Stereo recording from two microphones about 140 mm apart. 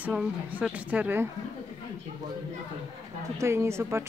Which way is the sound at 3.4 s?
20° right (ahead or behind).